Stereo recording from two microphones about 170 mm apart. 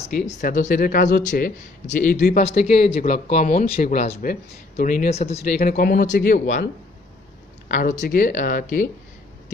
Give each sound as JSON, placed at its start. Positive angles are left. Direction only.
{"t": 0.0, "sound": "speech", "side_deg": 45}
{"t": 5.1, "sound": "speech", "side_deg": 40}
{"t": 7.6, "sound": "speech", "side_deg": 55}